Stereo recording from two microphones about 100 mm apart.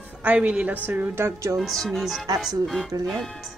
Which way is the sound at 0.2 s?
15° right (ahead or behind).